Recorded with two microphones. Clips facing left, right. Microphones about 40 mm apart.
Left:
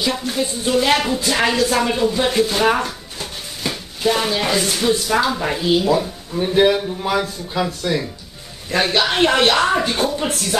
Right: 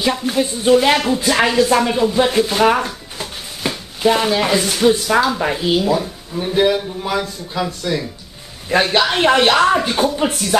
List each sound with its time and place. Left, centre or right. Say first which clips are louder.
0.1 s speech: right 3 dB; centre
0.9 s speech: right 3 dB; centre
5.9 s speech: even; centre